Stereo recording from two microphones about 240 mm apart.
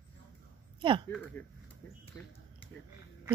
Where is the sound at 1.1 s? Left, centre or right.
Centre.